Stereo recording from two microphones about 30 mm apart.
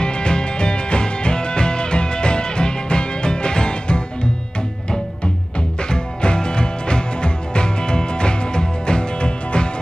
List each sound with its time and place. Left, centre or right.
0.0 s music: left
5.9 s music: left